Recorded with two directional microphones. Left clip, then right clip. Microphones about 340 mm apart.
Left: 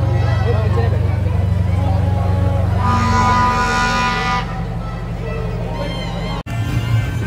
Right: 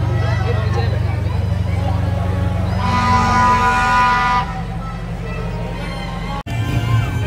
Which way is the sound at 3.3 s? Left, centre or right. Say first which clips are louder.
Right 2 dB; centre.